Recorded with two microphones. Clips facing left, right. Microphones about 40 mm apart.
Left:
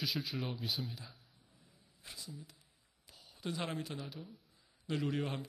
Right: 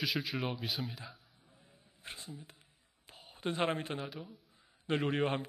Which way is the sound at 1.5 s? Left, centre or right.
Right.